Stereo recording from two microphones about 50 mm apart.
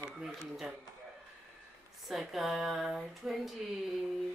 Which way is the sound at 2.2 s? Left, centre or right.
Centre.